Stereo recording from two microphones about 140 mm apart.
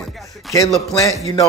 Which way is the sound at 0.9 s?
25° left (ahead or behind).